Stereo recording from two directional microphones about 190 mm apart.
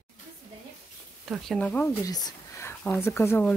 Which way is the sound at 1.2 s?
Centre (ahead or behind).